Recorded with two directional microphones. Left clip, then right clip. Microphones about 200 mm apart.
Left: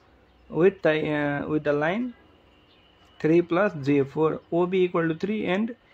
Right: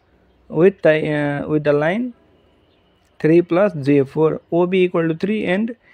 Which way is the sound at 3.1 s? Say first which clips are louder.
Right 7 dB; 35° right (ahead or behind).